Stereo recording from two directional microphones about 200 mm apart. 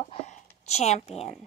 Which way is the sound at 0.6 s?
35° left (ahead or behind).